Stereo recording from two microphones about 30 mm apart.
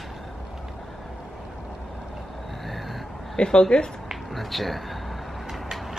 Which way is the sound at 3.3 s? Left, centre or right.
Left.